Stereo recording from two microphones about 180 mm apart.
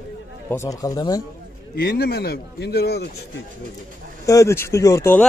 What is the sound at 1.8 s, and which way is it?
Speech, 60° left (ahead or behind).